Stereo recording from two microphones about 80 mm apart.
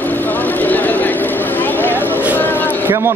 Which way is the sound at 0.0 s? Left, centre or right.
Left.